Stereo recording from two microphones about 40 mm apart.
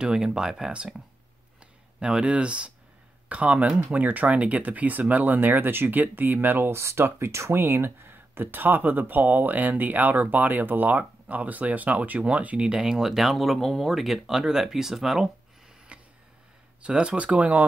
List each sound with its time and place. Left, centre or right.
0.0 s speech: centre
2.0 s speech: right
12.7 s speech: centre
15.9 s a sound: right
16.8 s speech: right